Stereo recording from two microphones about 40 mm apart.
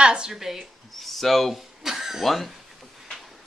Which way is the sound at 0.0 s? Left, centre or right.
Right.